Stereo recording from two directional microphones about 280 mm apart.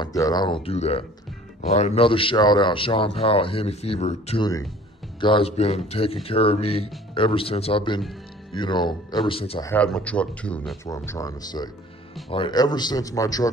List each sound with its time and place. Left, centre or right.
0.0 s speech: centre
9.7 s speech: centre